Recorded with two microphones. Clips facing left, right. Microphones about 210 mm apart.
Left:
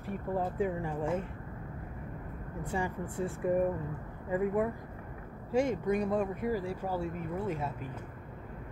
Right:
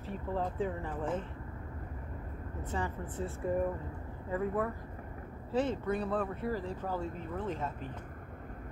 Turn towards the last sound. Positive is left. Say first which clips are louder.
# left 2 dB
turn(degrees=10)  # may be behind; listen again after turning